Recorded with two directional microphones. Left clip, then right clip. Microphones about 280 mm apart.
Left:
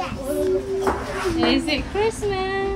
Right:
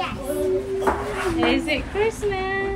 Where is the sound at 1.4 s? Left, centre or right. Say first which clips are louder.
Left 1 dB; centre.